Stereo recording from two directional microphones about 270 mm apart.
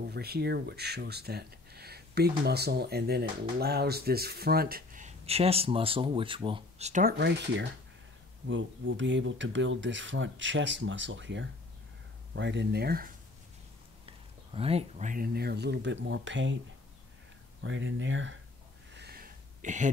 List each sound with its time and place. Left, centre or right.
0.1 s speech: right
14.0 s speech: right
17.6 s speech: right
18.9 s a sound: right